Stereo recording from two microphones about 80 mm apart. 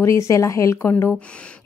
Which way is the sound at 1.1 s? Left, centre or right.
Centre.